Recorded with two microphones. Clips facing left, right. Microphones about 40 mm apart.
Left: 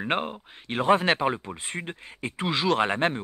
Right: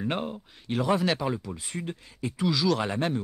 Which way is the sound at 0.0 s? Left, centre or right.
Left.